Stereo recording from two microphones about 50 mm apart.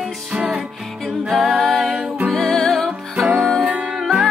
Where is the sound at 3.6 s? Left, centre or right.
Right.